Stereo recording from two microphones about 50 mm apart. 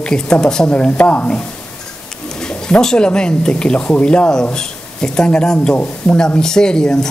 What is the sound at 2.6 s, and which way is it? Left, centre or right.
Speech, centre.